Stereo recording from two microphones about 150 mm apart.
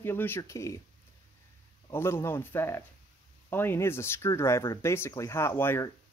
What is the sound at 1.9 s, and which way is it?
Speech, 15° left (ahead or behind).